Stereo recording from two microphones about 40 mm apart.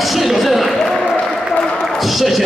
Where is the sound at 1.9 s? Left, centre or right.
Centre.